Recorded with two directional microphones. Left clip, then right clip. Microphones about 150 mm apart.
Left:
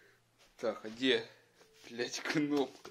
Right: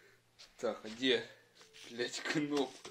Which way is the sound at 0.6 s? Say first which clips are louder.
Left 1 dB; 15° left (ahead or behind).